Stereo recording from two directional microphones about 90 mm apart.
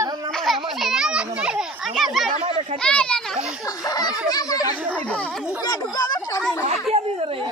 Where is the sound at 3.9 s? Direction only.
45° left (ahead or behind).